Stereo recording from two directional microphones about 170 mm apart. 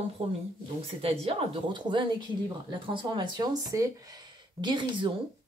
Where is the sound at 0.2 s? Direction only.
40° right (ahead or behind).